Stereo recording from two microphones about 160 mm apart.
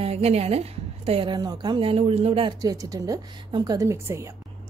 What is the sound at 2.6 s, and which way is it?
A woman's voice, 20° right (ahead or behind).